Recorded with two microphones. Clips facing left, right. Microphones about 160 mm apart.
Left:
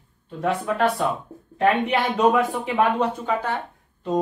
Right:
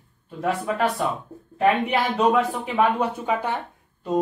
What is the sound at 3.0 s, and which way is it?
Speech, 15° right (ahead or behind).